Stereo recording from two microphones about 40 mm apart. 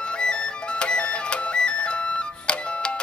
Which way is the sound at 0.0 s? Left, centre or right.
Left.